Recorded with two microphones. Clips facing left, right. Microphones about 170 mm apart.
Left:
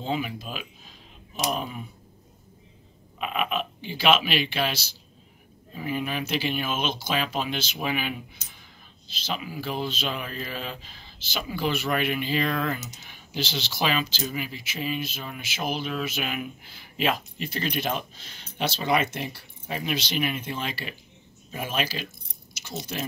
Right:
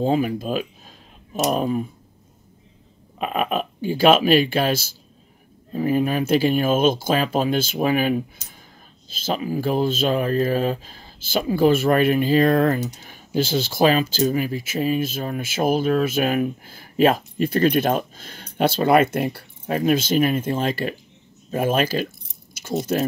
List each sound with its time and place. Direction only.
0.0 s speech: 45° right (ahead or behind)
3.2 s speech: 45° right (ahead or behind)